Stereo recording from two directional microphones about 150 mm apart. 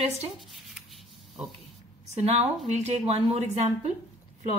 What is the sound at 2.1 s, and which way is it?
A woman's voice, 45° right (ahead or behind).